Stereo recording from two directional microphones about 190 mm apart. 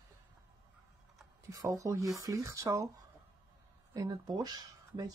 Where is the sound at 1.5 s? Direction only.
15° right (ahead or behind).